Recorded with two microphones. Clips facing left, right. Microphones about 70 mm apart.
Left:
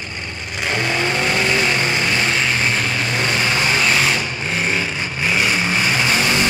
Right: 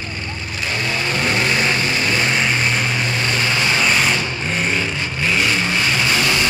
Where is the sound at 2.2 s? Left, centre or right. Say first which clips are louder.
Even; centre.